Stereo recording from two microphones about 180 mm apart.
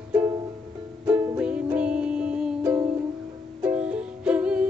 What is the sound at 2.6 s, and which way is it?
Music, 15° right (ahead or behind).